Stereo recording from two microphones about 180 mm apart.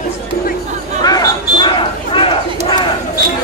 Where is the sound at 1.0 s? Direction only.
20° left (ahead or behind).